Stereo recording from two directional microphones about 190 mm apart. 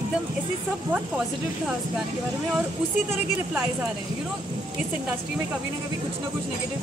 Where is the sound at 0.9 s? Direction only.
10° right (ahead or behind).